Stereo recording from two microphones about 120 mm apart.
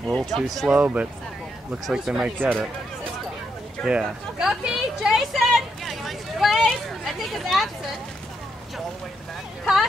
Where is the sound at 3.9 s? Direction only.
5° right (ahead or behind).